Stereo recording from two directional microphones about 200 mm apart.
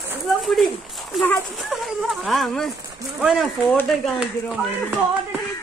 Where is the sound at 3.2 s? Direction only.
Centre (ahead or behind).